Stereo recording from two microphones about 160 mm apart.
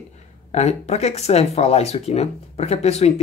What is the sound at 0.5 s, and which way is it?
Speech, 45° left (ahead or behind).